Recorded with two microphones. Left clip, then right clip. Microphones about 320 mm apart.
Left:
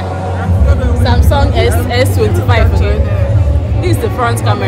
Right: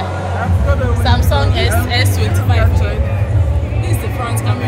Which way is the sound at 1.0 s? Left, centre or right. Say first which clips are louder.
Left 5 dB; centre.